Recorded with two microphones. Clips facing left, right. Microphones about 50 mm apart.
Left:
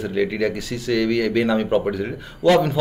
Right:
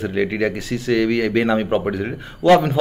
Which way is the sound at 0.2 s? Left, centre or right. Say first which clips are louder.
Even; right.